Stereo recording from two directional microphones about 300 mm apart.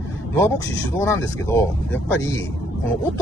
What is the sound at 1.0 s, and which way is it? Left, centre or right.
Speech, centre.